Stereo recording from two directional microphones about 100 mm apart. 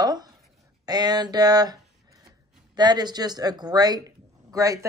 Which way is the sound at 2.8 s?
45° right (ahead or behind).